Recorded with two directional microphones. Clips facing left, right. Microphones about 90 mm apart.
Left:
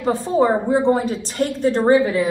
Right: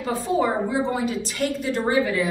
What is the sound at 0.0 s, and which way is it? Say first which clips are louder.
A woman's voice: left 5 dB; 35° left (ahead or behind).